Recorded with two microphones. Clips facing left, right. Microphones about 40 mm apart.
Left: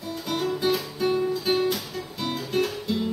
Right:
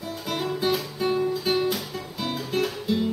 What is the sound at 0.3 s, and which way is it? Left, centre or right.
Music, centre.